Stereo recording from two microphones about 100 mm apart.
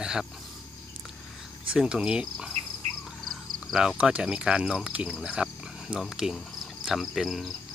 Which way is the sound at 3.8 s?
10° right (ahead or behind).